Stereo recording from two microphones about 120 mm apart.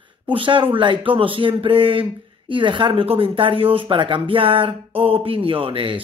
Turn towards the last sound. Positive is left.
turn(degrees=-45)  # may be behind; listen again after turning